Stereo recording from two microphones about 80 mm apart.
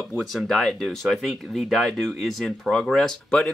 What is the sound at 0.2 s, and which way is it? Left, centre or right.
Speech, centre.